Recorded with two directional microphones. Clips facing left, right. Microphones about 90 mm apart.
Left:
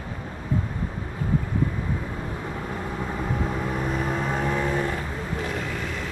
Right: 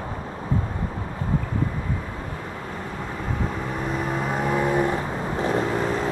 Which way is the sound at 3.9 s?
Centre (ahead or behind).